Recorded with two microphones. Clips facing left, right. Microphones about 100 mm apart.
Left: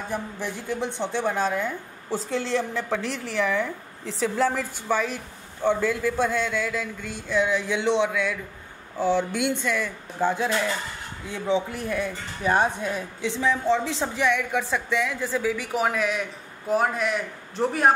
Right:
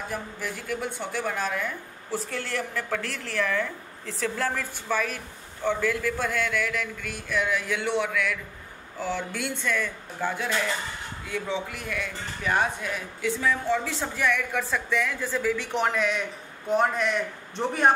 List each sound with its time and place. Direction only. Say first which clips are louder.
0.1 s a woman's voice: left 3 dB; 25° left (ahead or behind); by 17.9 s 5° left (ahead or behind)